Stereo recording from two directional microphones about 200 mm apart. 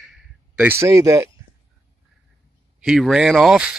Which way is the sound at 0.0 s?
5° right (ahead or behind).